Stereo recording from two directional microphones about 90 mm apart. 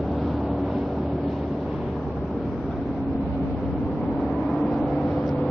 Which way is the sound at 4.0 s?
5° left (ahead or behind).